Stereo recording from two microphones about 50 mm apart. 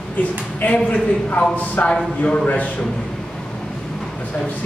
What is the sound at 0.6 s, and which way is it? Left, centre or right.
A man's voice, left.